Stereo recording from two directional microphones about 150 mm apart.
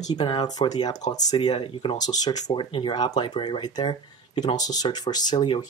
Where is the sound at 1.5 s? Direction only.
35° left (ahead or behind).